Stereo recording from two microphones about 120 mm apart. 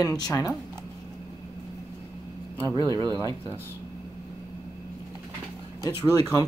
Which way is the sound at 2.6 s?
35° right (ahead or behind).